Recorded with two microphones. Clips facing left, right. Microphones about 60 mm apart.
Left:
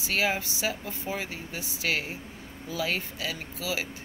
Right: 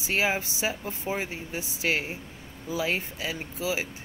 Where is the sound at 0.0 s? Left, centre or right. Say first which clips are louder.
Right 1 dB; right.